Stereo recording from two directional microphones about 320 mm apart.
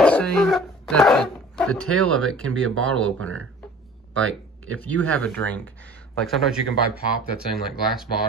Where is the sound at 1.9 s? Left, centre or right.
Right.